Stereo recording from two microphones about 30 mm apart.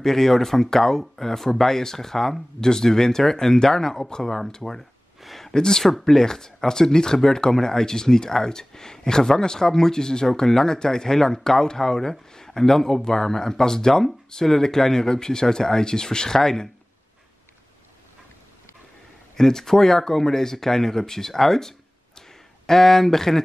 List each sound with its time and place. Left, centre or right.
0.0 s speech: centre
19.3 s speech: centre